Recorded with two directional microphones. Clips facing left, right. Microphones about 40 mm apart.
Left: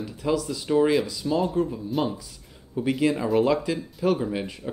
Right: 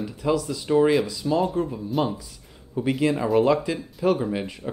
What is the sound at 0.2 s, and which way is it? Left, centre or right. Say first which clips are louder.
Speech: right 1 dB; centre.